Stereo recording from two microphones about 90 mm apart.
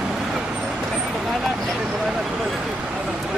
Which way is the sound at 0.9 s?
5° right (ahead or behind).